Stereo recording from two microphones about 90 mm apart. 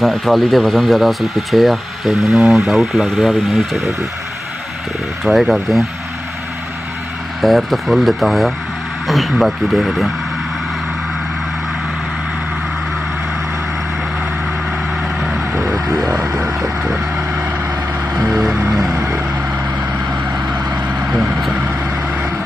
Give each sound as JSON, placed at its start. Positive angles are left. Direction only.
{"t": 0.0, "sound": "speech", "side_deg": 0}
{"t": 5.2, "sound": "speech", "side_deg": 0}
{"t": 7.4, "sound": "speech", "side_deg": 0}
{"t": 15.1, "sound": "a sound", "side_deg": -5}
{"t": 16.3, "sound": "vehicle", "side_deg": -5}
{"t": 18.3, "sound": "music", "side_deg": -5}
{"t": 21.5, "sound": "vehicle", "side_deg": -20}